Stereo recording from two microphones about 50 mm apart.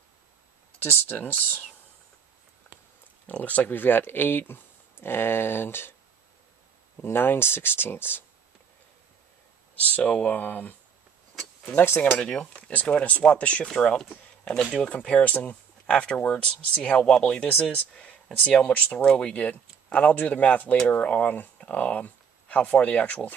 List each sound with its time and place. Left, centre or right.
0.7 s speech: left
3.3 s speech: left
7.0 s speech: left
9.8 s speech: left
12.2 s speech: centre
14.4 s speech: centre
14.9 s speech: left